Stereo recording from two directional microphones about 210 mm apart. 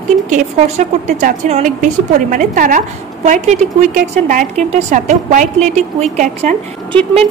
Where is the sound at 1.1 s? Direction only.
35° right (ahead or behind).